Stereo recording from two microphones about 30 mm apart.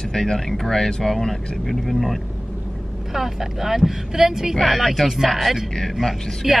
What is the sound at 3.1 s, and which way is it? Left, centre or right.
A woman's voice, centre.